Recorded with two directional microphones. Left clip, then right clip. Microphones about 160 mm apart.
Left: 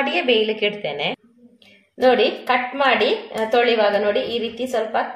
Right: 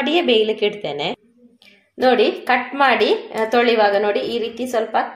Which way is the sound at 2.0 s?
35° right (ahead or behind).